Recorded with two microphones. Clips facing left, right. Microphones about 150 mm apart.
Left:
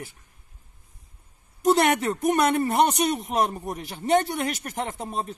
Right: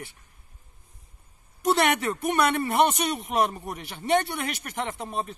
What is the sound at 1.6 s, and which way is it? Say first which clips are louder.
Speech: left 3 dB; 45° left (ahead or behind).